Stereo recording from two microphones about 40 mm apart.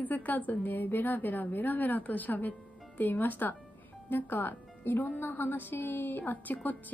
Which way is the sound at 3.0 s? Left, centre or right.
Left.